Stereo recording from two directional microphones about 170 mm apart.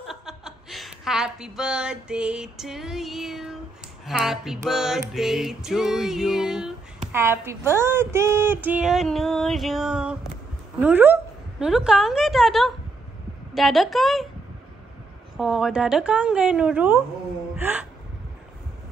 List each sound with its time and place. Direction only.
0.0 s a woman's voice: centre (ahead or behind)
4.0 s music: centre (ahead or behind)
7.1 s speech: 15° right (ahead or behind)
11.6 s music: 5° right (ahead or behind)
15.3 s speech: 5° right (ahead or behind)